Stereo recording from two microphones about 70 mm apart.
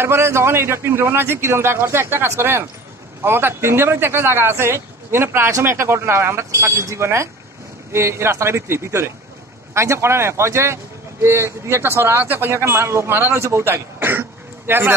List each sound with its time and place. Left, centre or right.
0.0 s speech: right